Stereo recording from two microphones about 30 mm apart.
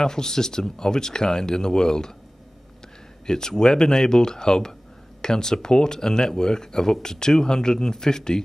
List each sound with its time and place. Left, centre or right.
0.0 s speech: left
3.3 s speech: left